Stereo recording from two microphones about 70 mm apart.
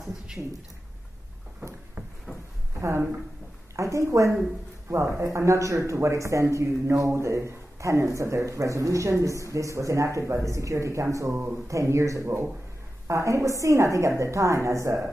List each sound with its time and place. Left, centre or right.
0.4 s speech: centre
3.7 s speech: right